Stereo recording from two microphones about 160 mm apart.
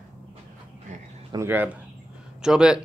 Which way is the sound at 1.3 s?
15° right (ahead or behind).